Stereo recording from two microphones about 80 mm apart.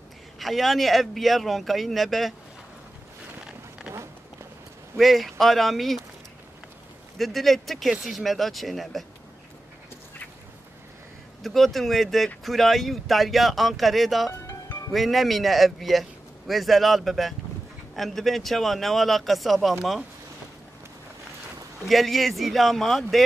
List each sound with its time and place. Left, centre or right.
0.4 s a man's voice: centre
3.9 s a sound: right
4.9 s a man's voice: centre
7.2 s a man's voice: centre
11.4 s a man's voice: centre
14.3 s music: left
14.9 s a man's voice: centre
21.8 s a man's voice: centre